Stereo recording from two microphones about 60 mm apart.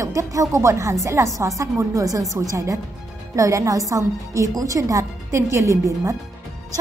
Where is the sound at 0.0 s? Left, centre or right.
Right.